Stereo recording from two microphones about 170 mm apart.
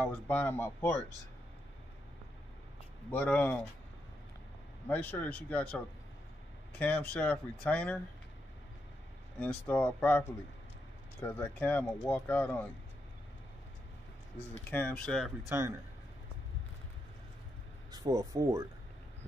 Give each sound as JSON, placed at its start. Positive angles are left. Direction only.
{"t": 0.0, "sound": "speech", "side_deg": 10}
{"t": 3.1, "sound": "speech", "side_deg": 10}
{"t": 4.8, "sound": "speech", "side_deg": 10}
{"t": 6.8, "sound": "speech", "side_deg": 10}
{"t": 9.4, "sound": "speech", "side_deg": 10}
{"t": 14.7, "sound": "speech", "side_deg": 10}
{"t": 17.9, "sound": "speech", "side_deg": -20}